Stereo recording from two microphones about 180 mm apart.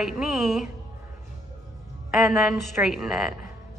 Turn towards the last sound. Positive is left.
turn(degrees=-5)  # may be behind; listen again after turning